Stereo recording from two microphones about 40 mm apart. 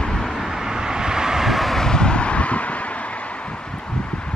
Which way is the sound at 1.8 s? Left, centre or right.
Centre.